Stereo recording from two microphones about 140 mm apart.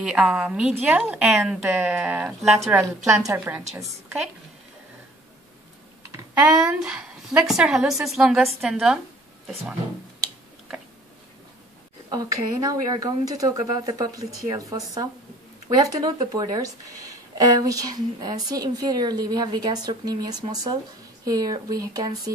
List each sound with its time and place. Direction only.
0.0 s a woman's voice: 5° right (ahead or behind)
3.1 s a woman's voice: 25° right (ahead or behind)
3.7 s a woman's voice: 10° right (ahead or behind)
6.6 s a woman's voice: 5° right (ahead or behind)
12.1 s a woman's voice: 25° right (ahead or behind)